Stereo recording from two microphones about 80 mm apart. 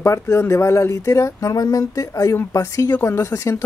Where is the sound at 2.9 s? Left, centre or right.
Left.